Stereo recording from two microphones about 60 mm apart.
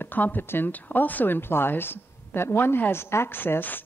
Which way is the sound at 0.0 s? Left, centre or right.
Left.